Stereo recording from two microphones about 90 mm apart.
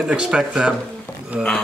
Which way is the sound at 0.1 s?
10° right (ahead or behind).